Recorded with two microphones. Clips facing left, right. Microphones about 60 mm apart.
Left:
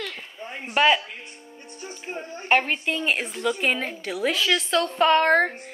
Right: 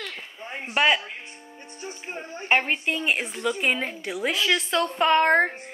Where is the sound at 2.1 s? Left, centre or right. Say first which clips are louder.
Left 2 dB; centre.